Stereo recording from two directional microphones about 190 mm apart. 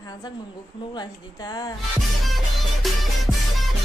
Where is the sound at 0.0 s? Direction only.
20° left (ahead or behind).